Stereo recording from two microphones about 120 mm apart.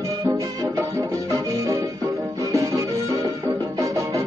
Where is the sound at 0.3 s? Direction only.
25° right (ahead or behind).